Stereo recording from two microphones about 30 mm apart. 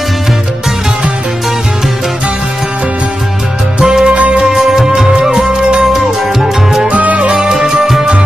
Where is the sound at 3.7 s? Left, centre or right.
Right.